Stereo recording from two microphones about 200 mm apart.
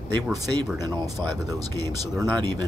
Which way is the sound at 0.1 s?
20° right (ahead or behind).